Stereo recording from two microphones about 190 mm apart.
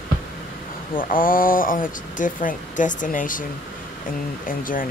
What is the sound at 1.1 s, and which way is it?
Speech, 45° left (ahead or behind).